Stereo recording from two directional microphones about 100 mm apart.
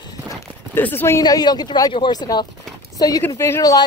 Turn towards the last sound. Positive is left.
turn(degrees=30)  # may be behind; listen again after turning